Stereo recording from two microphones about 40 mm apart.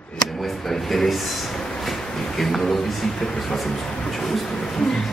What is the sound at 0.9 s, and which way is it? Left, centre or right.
Speech, centre.